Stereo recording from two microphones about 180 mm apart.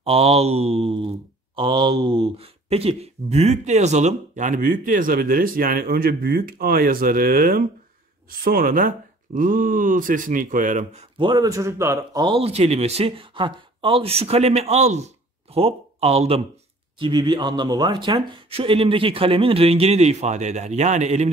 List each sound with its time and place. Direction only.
0.0 s speech: 35° right (ahead or behind)
11.2 s speech: 20° right (ahead or behind)
17.0 s speech: 25° right (ahead or behind); by 21.3 s 40° right (ahead or behind)